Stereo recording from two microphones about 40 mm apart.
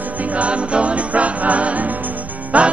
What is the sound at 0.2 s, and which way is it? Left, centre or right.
Music, right.